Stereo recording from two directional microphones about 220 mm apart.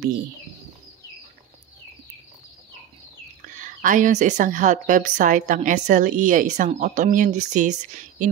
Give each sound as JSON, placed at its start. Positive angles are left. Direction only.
{"t": 3.5, "sound": "speech", "side_deg": -35}